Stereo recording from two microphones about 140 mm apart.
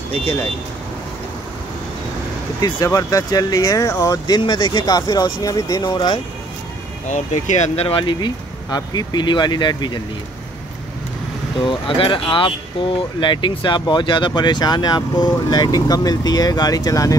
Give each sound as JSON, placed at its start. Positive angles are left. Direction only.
{"t": 2.6, "sound": "speech", "side_deg": 25}
{"t": 7.1, "sound": "speech", "side_deg": 55}
{"t": 8.0, "sound": "speech", "side_deg": 35}
{"t": 11.6, "sound": "speech", "side_deg": 35}